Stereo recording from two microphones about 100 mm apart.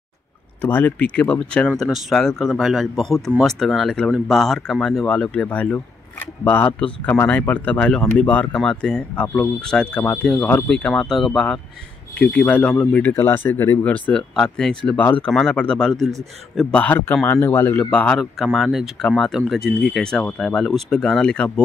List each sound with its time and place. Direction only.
0.6 s speech: 20° left (ahead or behind)
1.8 s speech: centre (ahead or behind)
16.7 s speech: 15° left (ahead or behind)
17.9 s speech: 5° left (ahead or behind)